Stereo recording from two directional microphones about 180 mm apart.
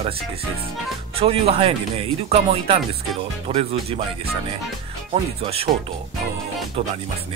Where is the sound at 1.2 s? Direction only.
30° right (ahead or behind).